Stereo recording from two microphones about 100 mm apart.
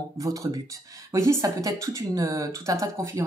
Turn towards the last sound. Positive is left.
turn(degrees=-30)  # may be behind; listen again after turning